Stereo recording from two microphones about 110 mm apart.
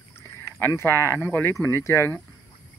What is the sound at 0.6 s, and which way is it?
Speech, 20° left (ahead or behind).